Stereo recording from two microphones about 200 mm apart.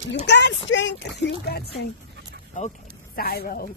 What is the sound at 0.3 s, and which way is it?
Speech, 60° left (ahead or behind).